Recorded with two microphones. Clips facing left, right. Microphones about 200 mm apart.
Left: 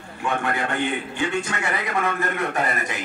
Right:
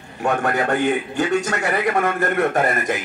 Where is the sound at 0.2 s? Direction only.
45° right (ahead or behind).